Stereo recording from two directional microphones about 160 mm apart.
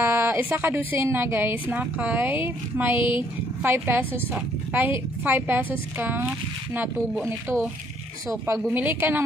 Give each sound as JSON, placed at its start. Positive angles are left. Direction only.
{"t": 0.0, "sound": "a woman's voice", "side_deg": -15}
{"t": 8.5, "sound": "a woman's voice", "side_deg": -10}